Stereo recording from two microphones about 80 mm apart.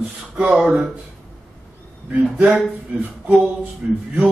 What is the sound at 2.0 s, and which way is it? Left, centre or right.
Speech, centre.